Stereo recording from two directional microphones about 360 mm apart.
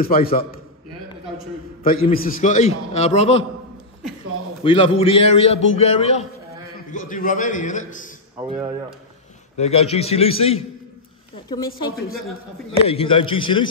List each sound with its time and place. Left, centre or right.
0.0 s a man's voice: left
1.8 s a man's voice: left
4.6 s a man's voice: centre
8.5 s speech: centre
9.6 s a man's voice: centre
12.7 s a man's voice: centre